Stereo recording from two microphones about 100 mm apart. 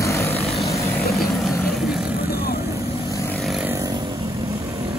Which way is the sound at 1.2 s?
Centre (ahead or behind).